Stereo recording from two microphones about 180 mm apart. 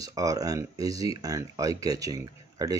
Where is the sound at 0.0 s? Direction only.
20° right (ahead or behind).